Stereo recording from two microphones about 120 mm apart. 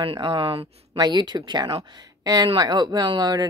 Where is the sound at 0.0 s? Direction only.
45° right (ahead or behind).